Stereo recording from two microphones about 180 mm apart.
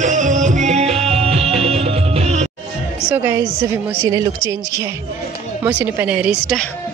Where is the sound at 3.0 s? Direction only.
15° right (ahead or behind).